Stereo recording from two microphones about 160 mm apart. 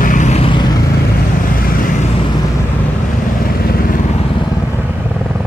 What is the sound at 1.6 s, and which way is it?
Vehicle, 55° left (ahead or behind).